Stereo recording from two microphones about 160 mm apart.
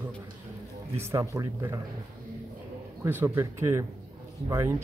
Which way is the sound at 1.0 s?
20° right (ahead or behind).